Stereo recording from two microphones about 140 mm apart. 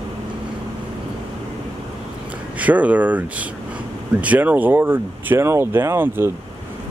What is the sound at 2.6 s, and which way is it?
Speech, 10° right (ahead or behind).